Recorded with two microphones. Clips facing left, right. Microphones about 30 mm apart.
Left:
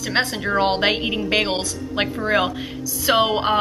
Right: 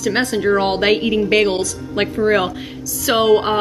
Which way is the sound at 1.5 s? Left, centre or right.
Left.